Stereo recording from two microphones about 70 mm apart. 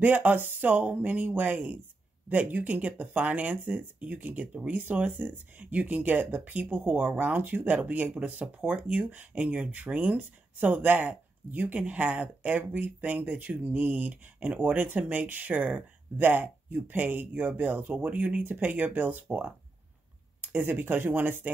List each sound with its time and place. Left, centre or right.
0.0 s speech: right
20.4 s a sound: right
20.8 s speech: right